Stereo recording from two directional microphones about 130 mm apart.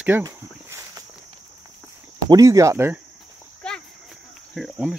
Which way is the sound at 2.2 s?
25° right (ahead or behind).